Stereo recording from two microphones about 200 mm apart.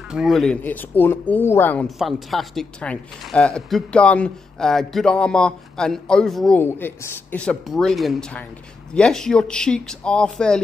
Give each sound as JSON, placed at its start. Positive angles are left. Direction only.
{"t": 0.1, "sound": "speech", "side_deg": 0}